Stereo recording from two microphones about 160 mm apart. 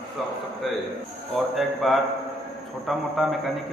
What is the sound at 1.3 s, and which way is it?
A man's voice, centre (ahead or behind).